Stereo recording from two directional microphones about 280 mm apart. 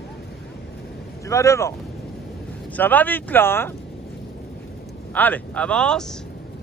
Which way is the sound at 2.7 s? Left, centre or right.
Centre.